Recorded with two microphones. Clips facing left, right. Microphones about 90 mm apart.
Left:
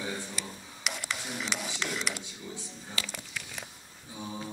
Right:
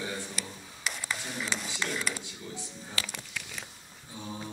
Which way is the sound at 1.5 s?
75° left (ahead or behind).